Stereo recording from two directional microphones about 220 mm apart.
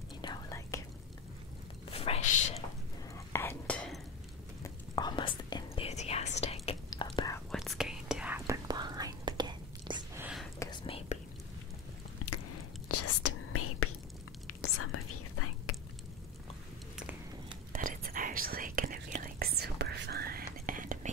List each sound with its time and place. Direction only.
0.2 s whispering: 15° left (ahead or behind)
1.9 s a sound: 25° left (ahead or behind)
3.3 s whispering: 10° left (ahead or behind)
4.9 s whispering: 20° left (ahead or behind)
7.5 s whispering: centre (ahead or behind)
8.6 s whispering: 20° right (ahead or behind)
10.2 s whispering: centre (ahead or behind)
10.6 s whispering: 20° left (ahead or behind)
12.2 s a sound: 80° left
12.8 s whispering: 90° left
17.7 s whispering: 40° right (ahead or behind)